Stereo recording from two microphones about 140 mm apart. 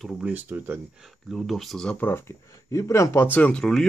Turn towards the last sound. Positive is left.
turn(degrees=5)  # may be behind; listen again after turning